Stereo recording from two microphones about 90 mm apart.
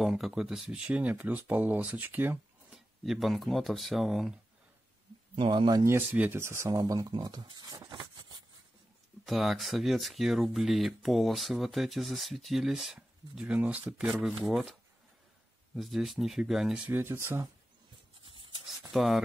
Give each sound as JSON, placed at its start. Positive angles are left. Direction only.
{"t": 0.0, "sound": "speech", "side_deg": -5}
{"t": 2.7, "sound": "speech", "side_deg": 0}
{"t": 5.3, "sound": "a man's voice", "side_deg": -75}
{"t": 5.9, "sound": "speech", "side_deg": -20}
{"t": 9.2, "sound": "speech", "side_deg": 0}
{"t": 16.8, "sound": "speech", "side_deg": -25}
{"t": 18.2, "sound": "a sound", "side_deg": -75}
{"t": 18.8, "sound": "speech", "side_deg": 0}